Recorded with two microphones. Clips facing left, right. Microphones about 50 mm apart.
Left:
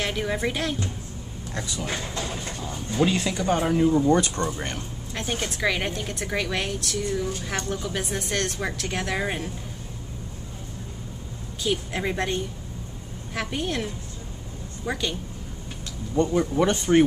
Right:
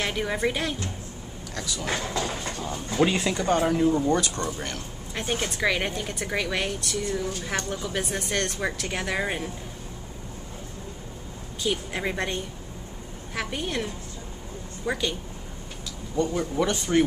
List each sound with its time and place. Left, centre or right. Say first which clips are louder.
0.0 s a woman's voice: even; centre
1.5 s speech: left 1 dB; left
3.0 s a woman's voice: even; centre
4.1 s speech: left 3 dB; left
5.1 s a woman's voice: right 1 dB; centre
11.6 s a woman's voice: left 1 dB; centre
14.9 s a woman's voice: right 1 dB; centre
16.2 s speech: left 3 dB; left